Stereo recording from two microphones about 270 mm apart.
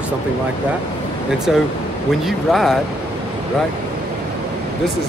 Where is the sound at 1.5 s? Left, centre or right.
Centre.